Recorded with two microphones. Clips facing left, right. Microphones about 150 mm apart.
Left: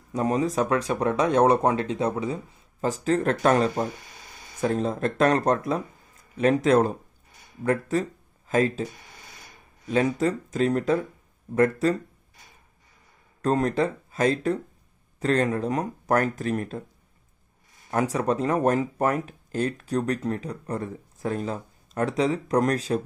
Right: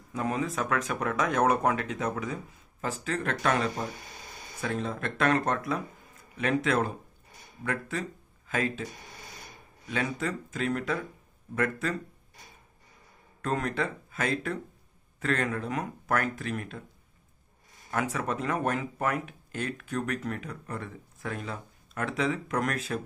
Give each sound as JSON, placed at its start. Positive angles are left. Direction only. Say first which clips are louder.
{"t": 0.1, "sound": "speech", "louder": "left 6 dB", "side_deg": 35}
{"t": 9.8, "sound": "speech", "louder": "left 8 dB", "side_deg": 35}
{"t": 13.4, "sound": "speech", "louder": "left 7 dB", "side_deg": 35}
{"t": 17.9, "sound": "speech", "louder": "left 6 dB", "side_deg": 35}